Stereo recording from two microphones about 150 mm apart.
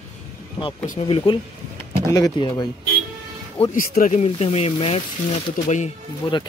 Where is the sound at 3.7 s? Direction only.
65° left (ahead or behind).